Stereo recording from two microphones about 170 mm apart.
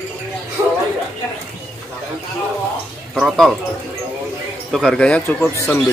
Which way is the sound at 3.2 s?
Centre (ahead or behind).